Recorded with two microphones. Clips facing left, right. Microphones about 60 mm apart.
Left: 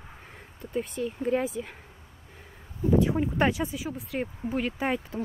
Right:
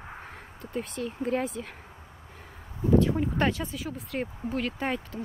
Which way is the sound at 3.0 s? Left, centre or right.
Centre.